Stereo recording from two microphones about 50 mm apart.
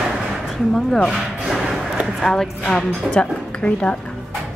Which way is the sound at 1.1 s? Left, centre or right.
Centre.